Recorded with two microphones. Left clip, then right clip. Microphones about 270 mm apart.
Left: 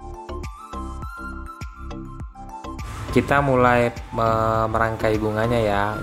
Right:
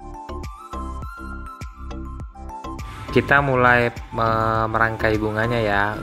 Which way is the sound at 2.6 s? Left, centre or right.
Centre.